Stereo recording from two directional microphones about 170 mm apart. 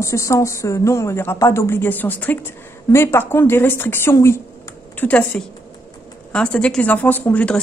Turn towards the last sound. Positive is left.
turn(degrees=10)  # may be behind; listen again after turning